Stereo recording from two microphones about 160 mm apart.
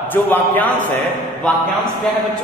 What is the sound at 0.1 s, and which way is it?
A man's voice, 10° left (ahead or behind).